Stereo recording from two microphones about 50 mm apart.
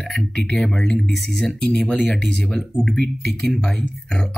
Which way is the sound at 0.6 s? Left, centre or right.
Centre.